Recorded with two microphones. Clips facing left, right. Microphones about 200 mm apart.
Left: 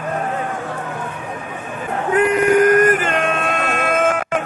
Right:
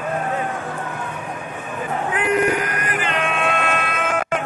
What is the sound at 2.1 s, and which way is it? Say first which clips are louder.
Music: left 6 dB; 45° left (ahead or behind).